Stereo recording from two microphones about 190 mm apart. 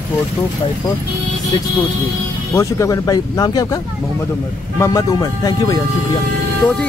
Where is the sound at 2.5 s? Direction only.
15° left (ahead or behind).